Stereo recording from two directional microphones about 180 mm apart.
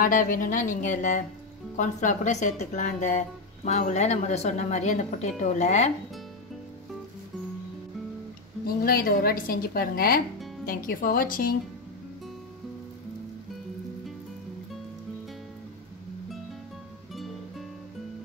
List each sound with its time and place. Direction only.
0.0 s a woman's voice: 50° left (ahead or behind)
8.6 s a woman's voice: 55° left (ahead or behind)
17.1 s music: centre (ahead or behind)